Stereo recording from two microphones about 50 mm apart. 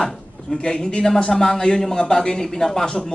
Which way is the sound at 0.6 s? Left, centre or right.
Centre.